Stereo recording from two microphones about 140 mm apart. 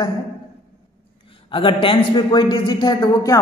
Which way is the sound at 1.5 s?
40° left (ahead or behind).